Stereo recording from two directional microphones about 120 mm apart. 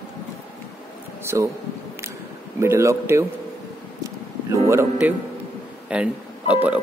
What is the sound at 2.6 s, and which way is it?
Speech, 25° right (ahead or behind).